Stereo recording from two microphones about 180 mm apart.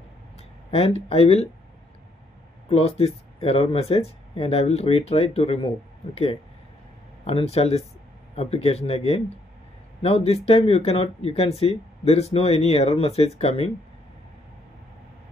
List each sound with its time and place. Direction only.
0.7 s speech: 35° left (ahead or behind)
2.7 s speech: 35° left (ahead or behind)
7.2 s speech: 35° left (ahead or behind)